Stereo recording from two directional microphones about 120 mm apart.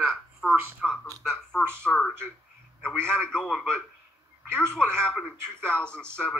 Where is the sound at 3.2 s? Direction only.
5° left (ahead or behind).